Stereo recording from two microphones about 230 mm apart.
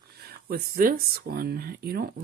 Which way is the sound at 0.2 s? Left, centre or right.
Right.